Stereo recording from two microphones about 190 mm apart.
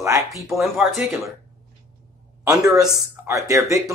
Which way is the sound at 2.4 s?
15° right (ahead or behind).